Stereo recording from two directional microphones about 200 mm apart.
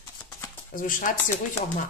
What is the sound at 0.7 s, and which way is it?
Speech, 45° left (ahead or behind).